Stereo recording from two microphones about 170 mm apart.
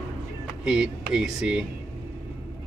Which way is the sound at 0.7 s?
5° right (ahead or behind).